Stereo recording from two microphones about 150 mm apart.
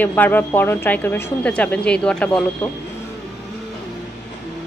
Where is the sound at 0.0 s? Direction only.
10° left (ahead or behind).